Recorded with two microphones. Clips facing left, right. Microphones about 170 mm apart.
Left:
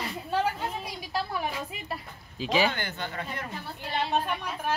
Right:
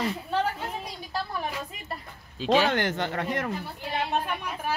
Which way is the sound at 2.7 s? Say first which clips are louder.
Right 7 dB; 80° right.